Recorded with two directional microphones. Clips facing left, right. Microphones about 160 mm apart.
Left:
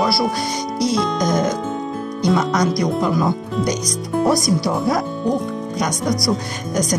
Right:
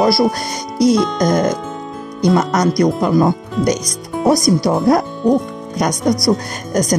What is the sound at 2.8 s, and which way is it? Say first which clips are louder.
Speech: right 5 dB; 50° right (ahead or behind).